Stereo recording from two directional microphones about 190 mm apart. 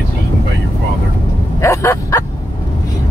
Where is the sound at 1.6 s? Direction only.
15° left (ahead or behind).